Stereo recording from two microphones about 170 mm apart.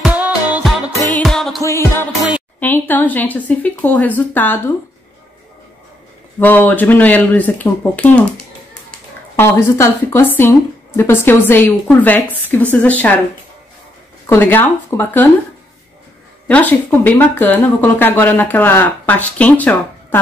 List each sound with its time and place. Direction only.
0.0 s music: 10° right (ahead or behind)
1.2 s music: centre (ahead or behind)
1.6 s speech: 15° left (ahead or behind)
6.4 s speech: 10° left (ahead or behind)
9.4 s speech: 15° left (ahead or behind)
14.2 s speech: 15° left (ahead or behind)
16.4 s speech: 10° left (ahead or behind)